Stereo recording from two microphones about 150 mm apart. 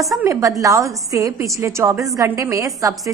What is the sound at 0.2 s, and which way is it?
A woman's voice, 20° right (ahead or behind).